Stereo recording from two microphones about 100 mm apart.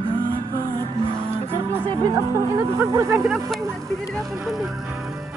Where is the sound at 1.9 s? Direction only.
35° right (ahead or behind).